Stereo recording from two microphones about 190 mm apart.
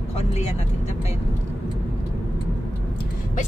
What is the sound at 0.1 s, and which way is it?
Vehicle, 35° left (ahead or behind).